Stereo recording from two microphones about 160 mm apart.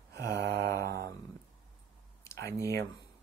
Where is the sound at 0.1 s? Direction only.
85° right.